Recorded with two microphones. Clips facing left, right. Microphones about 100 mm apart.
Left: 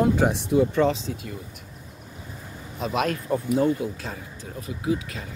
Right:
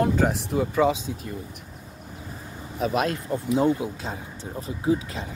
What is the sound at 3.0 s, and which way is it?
Speech, 30° right (ahead or behind).